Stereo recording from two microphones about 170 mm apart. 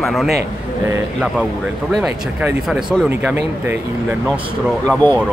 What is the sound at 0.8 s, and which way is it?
Speech, 15° right (ahead or behind).